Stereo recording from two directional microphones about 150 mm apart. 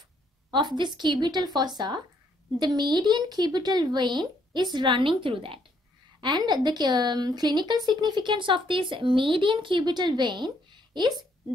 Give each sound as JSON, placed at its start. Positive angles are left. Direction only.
{"t": 0.5, "sound": "speech", "side_deg": -30}